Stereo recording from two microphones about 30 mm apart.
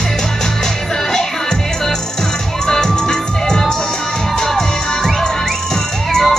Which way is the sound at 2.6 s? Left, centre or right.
Left.